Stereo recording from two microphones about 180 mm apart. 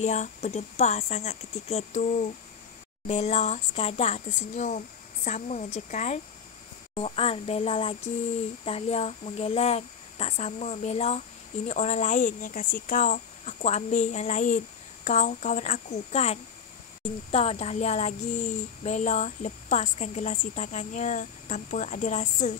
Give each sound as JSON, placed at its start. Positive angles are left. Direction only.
{"t": 0.0, "sound": "speech", "side_deg": 40}